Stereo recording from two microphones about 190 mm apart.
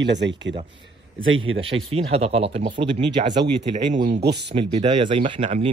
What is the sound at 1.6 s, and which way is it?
Speech, 30° right (ahead or behind).